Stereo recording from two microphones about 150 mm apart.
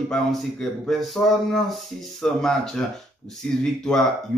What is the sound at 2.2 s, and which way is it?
A man's voice, 5° left (ahead or behind).